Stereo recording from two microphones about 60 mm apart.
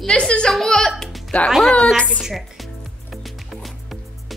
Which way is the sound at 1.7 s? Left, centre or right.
Centre.